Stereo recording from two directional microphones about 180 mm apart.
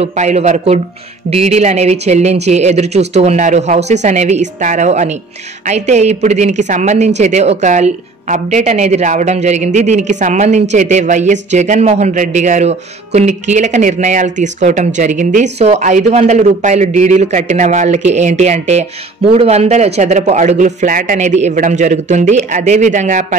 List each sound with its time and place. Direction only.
0.0 s a woman's voice: 40° right (ahead or behind)